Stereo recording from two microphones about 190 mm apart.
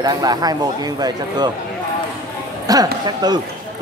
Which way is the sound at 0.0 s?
20° right (ahead or behind).